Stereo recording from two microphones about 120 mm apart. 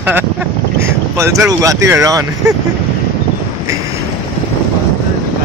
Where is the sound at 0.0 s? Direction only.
15° right (ahead or behind).